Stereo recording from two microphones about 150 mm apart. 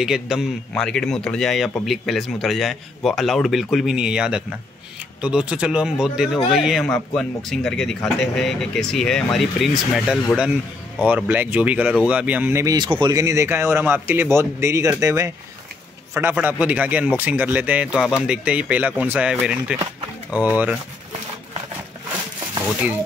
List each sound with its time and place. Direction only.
0.0 s speech: 5° right (ahead or behind)
12.7 s speech: 30° right (ahead or behind); by 20.7 s 10° right (ahead or behind)